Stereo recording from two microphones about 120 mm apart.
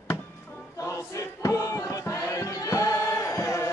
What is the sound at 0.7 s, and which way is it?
Choir, 25° left (ahead or behind).